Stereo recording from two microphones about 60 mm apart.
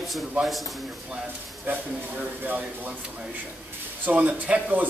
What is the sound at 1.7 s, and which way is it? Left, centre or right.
Speech, right.